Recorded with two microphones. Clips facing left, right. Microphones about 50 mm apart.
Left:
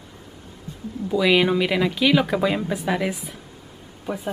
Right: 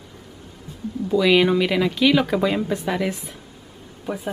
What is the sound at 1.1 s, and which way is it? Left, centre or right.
Speech, centre.